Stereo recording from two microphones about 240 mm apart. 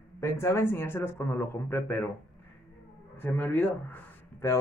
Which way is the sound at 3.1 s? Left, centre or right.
Centre.